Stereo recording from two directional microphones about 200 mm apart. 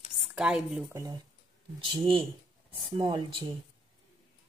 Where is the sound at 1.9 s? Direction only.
25° right (ahead or behind).